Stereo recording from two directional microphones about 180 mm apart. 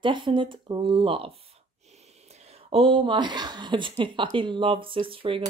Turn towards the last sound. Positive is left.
turn(degrees=-30)  # may be behind; listen again after turning